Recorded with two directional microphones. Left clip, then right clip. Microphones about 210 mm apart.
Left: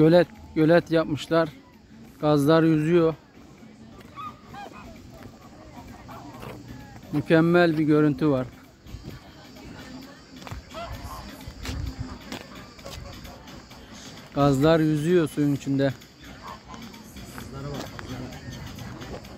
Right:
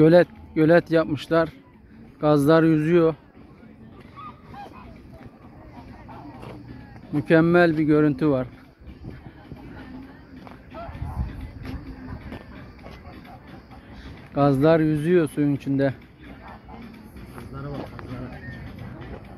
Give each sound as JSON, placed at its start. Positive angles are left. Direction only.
{"t": 0.0, "sound": "speech", "side_deg": 0}
{"t": 7.2, "sound": "speech", "side_deg": 0}
{"t": 14.3, "sound": "speech", "side_deg": 0}
{"t": 17.6, "sound": "a sound", "side_deg": -35}